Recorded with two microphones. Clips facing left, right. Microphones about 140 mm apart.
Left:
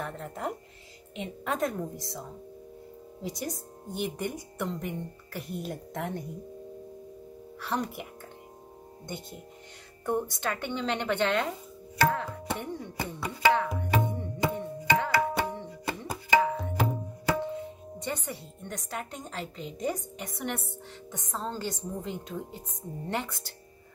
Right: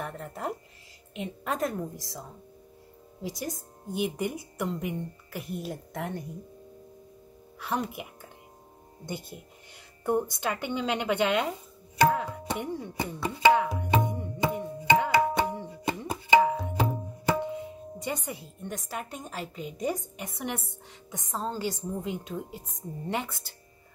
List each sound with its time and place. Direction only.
0.0 s a woman's voice: 5° right (ahead or behind)
7.6 s a woman's voice: 5° right (ahead or behind)
10.0 s a woman's voice: 10° right (ahead or behind)
12.0 s tabla: 15° right (ahead or behind)
13.0 s chopping: 20° right (ahead or behind)
13.5 s tabla: 10° right (ahead or behind)
16.5 s tabla: 10° right (ahead or behind)
18.0 s a woman's voice: 10° right (ahead or behind)